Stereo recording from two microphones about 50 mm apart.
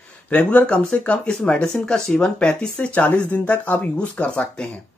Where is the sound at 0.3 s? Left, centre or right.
Left.